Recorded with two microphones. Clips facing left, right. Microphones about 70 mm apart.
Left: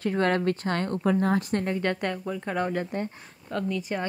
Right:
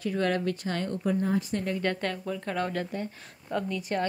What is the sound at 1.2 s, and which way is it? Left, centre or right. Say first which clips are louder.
Speech: left 3 dB; left.